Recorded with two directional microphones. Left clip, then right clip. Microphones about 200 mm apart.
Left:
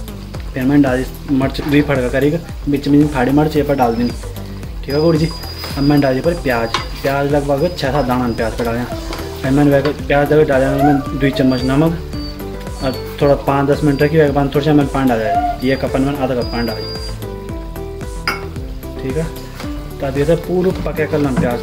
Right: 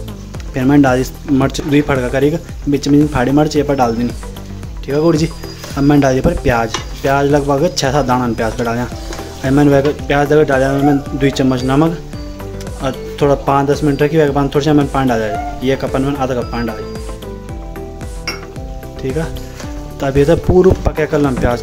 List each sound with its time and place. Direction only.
0.6 s speech: 35° right (ahead or behind)
19.0 s speech: 40° right (ahead or behind)
20.9 s speech: 40° right (ahead or behind)